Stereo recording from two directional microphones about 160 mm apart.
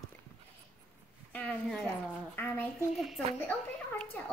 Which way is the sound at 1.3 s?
5° left (ahead or behind).